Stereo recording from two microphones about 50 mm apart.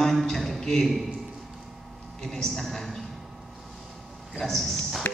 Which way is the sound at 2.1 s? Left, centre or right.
Centre.